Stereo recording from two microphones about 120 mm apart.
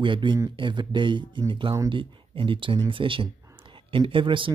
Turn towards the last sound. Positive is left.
turn(degrees=-45)  # may be behind; listen again after turning